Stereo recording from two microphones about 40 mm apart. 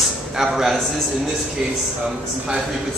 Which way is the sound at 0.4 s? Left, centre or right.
Centre.